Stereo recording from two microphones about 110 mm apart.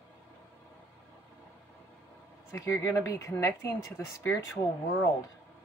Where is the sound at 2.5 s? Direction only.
25° left (ahead or behind).